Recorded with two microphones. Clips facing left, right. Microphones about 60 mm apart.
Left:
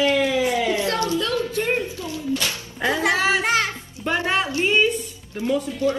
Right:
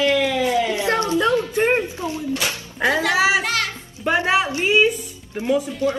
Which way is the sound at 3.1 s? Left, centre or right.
Centre.